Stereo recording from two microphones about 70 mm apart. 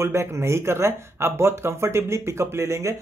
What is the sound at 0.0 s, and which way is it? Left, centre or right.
Speech, right.